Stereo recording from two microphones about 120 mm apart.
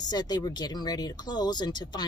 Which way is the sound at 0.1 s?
35° left (ahead or behind).